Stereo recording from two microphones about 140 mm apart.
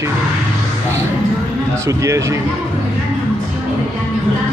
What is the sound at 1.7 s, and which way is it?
Speech, 20° right (ahead or behind).